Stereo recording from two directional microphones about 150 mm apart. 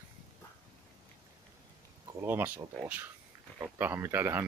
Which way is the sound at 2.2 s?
15° right (ahead or behind).